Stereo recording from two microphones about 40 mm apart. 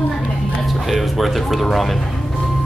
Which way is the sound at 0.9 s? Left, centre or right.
Centre.